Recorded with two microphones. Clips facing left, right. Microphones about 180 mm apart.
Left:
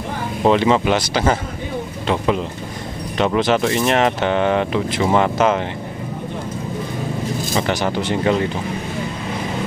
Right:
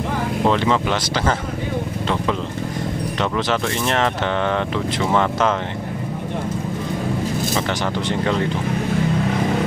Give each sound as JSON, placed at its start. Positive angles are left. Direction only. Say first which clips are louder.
{"t": 0.5, "sound": "speech", "louder": "left 5 dB", "side_deg": 15}
{"t": 3.2, "sound": "speech", "louder": "left 6 dB", "side_deg": 15}